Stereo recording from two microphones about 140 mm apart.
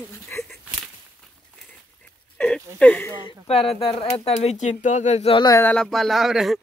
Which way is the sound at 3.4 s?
45° left (ahead or behind).